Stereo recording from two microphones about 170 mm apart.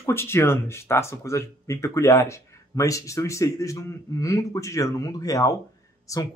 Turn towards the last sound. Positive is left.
turn(degrees=20)  # may be behind; listen again after turning